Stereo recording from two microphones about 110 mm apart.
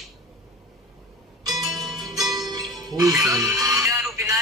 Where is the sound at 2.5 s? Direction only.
35° right (ahead or behind).